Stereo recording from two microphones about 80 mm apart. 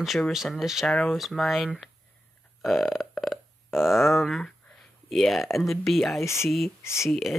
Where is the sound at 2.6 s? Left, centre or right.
Centre.